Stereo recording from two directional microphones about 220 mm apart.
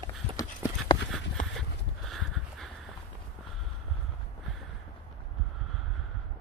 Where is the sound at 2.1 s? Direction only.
Centre (ahead or behind).